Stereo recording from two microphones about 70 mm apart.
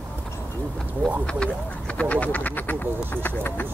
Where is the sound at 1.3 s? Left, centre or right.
Centre.